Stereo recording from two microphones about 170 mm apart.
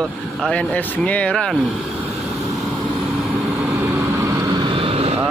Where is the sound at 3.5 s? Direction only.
20° right (ahead or behind); by 5.2 s 35° right (ahead or behind).